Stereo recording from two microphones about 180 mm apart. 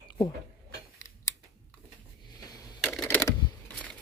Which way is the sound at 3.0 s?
10° left (ahead or behind).